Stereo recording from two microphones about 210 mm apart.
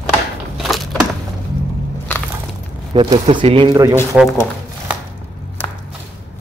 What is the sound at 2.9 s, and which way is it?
Speech, 25° right (ahead or behind).